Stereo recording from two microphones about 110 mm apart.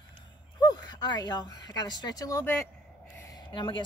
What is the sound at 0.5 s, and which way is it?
Speech, 40° left (ahead or behind).